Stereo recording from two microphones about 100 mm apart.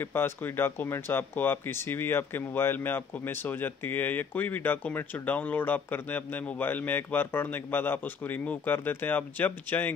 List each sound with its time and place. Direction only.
0.0 s speech: 20° left (ahead or behind)